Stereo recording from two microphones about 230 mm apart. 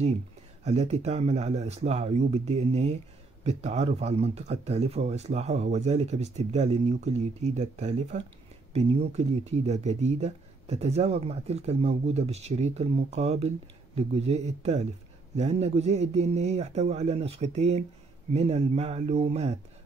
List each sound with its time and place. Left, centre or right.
0.7 s speech: right